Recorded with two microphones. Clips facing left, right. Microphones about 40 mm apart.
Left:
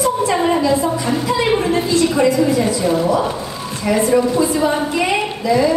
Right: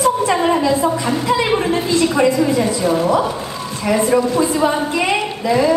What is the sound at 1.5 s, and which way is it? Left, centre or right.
Speech, right.